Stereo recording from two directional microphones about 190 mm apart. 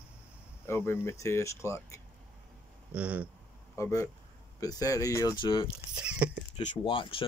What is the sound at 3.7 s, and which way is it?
Speech, 15° left (ahead or behind).